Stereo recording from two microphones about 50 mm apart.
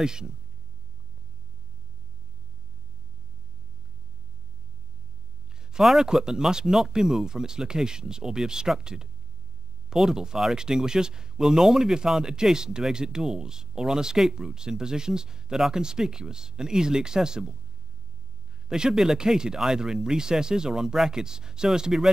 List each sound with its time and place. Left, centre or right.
0.0 s speech: centre
5.6 s a sound: centre
6.0 s speech: centre
18.7 s speech: centre